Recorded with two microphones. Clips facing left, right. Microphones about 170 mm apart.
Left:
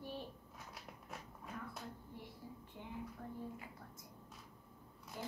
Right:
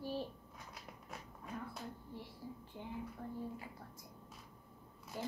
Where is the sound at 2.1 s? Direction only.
30° right (ahead or behind).